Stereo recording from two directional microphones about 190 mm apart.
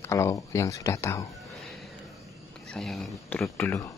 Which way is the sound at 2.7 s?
5° left (ahead or behind).